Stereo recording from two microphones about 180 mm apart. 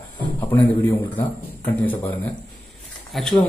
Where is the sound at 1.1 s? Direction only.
10° left (ahead or behind).